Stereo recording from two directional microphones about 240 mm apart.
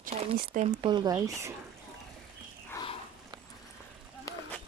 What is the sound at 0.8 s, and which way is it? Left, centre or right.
Speech, centre.